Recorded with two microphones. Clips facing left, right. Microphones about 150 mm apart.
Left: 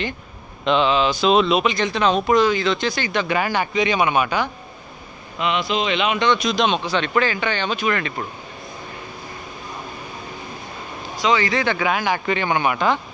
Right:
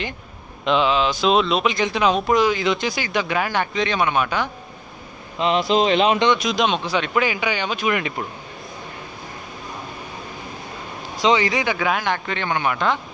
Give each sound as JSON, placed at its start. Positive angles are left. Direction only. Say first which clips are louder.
{"t": 0.7, "sound": "speech", "louder": "left 1 dB", "side_deg": 0}
{"t": 2.9, "sound": "speech", "louder": "left 1 dB", "side_deg": -5}
{"t": 3.7, "sound": "a man's voice", "louder": "left 3 dB", "side_deg": 10}
{"t": 5.4, "sound": "speech", "louder": "right 4 dB", "side_deg": -35}
{"t": 6.3, "sound": "speech", "louder": "left 1 dB", "side_deg": 0}
{"t": 11.2, "sound": "speech", "louder": "right 1 dB", "side_deg": -15}
{"t": 11.8, "sound": "a man's voice", "louder": "left 1 dB", "side_deg": 0}